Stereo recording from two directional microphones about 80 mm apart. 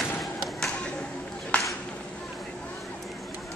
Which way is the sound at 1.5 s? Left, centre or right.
Centre.